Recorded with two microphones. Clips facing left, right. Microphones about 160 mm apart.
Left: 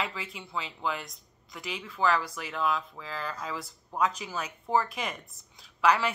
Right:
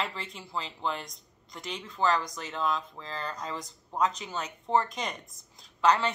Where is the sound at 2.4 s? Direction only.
30° right (ahead or behind).